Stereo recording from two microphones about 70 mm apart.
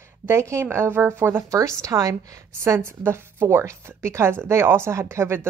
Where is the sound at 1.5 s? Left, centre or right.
Right.